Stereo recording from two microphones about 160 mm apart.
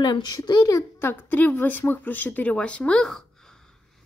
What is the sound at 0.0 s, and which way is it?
A woman's voice, 25° left (ahead or behind).